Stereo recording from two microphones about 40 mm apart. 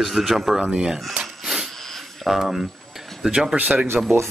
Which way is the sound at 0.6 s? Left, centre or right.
Right.